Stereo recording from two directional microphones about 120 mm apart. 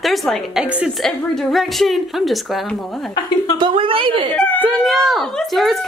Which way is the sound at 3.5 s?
50° right (ahead or behind).